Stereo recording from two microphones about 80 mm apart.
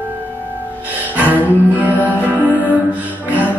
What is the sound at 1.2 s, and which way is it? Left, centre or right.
Music, right.